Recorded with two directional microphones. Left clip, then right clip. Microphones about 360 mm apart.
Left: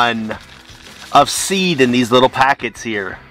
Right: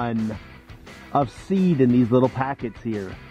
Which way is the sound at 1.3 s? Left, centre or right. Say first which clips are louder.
Left 8 dB; centre.